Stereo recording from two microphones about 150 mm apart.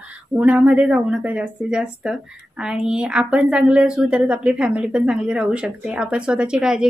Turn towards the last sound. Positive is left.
turn(degrees=-5)  # may be behind; listen again after turning